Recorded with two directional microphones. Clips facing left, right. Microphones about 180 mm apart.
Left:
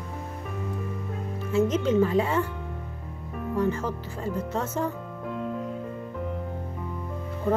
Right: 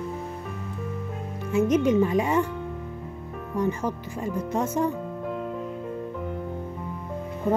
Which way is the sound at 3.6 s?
15° right (ahead or behind).